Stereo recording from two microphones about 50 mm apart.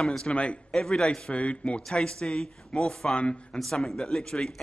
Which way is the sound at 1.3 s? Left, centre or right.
Left.